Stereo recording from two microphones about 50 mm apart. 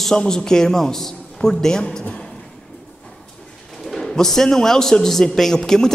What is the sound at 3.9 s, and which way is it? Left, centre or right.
A man's voice, centre.